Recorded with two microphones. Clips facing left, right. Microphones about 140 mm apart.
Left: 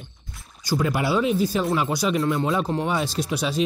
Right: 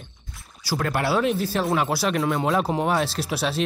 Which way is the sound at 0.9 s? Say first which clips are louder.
Right 2 dB; centre (ahead or behind).